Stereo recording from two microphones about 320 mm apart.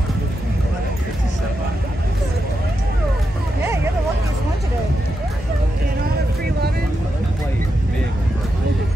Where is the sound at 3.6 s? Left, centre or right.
Centre.